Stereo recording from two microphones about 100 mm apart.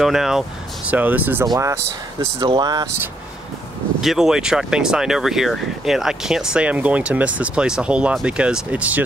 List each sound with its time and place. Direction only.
0.0 s speech: 5° right (ahead or behind)
0.8 s speech: 15° right (ahead or behind)
1.4 s speech: 35° right (ahead or behind)
4.0 s speech: 5° right (ahead or behind)